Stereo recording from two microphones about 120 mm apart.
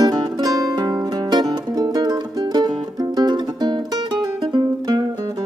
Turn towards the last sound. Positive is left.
turn(degrees=-35)  # may be behind; listen again after turning